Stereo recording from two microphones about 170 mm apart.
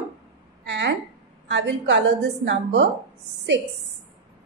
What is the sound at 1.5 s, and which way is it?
A woman's voice, 90° right.